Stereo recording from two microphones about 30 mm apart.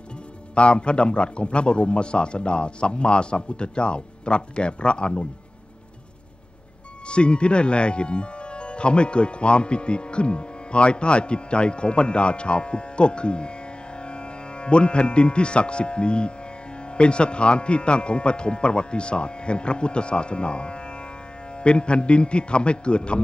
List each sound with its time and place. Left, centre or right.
0.6 s a man's voice: left
7.1 s speech: left